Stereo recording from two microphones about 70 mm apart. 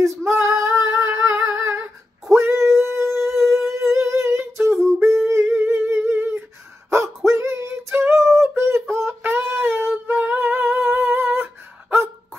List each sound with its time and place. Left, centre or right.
0.2 s female singing: right
1.5 s humming: right
2.3 s female singing: right
2.8 s humming: right
7.2 s female singing: right
8.4 s humming: right